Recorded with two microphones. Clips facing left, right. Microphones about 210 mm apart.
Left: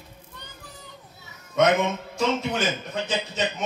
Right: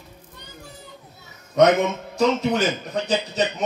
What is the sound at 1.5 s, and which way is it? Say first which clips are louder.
Speech: right 4 dB; 35° right (ahead or behind).